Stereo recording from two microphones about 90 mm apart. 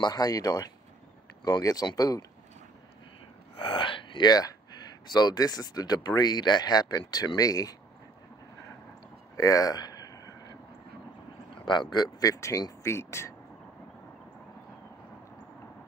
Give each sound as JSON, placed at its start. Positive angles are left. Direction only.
{"t": 0.0, "sound": "speech", "side_deg": 45}
{"t": 3.5, "sound": "gasp", "side_deg": 70}
{"t": 5.0, "sound": "speech", "side_deg": 50}
{"t": 9.4, "sound": "a sound", "side_deg": 40}
{"t": 11.5, "sound": "speech", "side_deg": 60}